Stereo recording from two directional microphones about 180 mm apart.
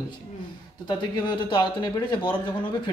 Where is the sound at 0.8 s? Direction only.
25° left (ahead or behind).